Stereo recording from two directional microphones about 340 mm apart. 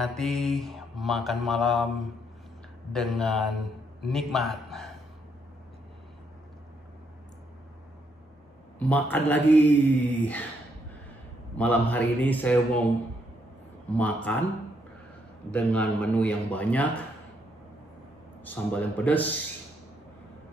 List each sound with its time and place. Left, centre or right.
0.0 s mantra: centre
8.7 s mantra: centre
11.5 s mantra: centre
13.9 s mantra: centre
15.5 s mantra: centre
18.4 s mantra: centre